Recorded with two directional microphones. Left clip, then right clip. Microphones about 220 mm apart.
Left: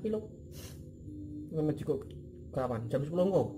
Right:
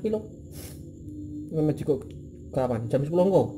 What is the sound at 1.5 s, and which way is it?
A man's voice, 20° right (ahead or behind).